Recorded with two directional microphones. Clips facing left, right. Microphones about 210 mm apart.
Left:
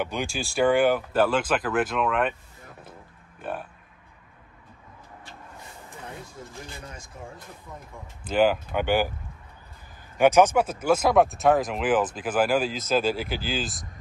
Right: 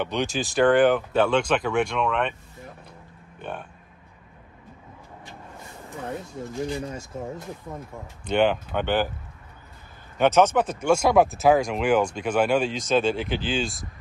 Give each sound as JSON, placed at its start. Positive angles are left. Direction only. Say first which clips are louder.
{"t": 0.0, "sound": "speech", "louder": "right 3 dB", "side_deg": 10}
{"t": 3.3, "sound": "speech", "louder": "left 1 dB", "side_deg": 5}
{"t": 8.3, "sound": "speech", "louder": "even", "side_deg": 5}
{"t": 10.1, "sound": "speech", "louder": "left 1 dB", "side_deg": 10}